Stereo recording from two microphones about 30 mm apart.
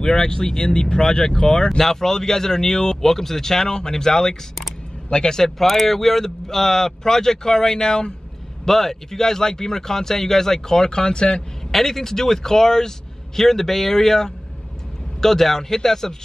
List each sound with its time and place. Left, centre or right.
0.0 s speech: left
1.0 s speech: centre
1.8 s speech: centre
5.4 s speech: centre; by 8.1 s left
8.6 s speech: centre; by 11.4 s left
11.7 s speech: centre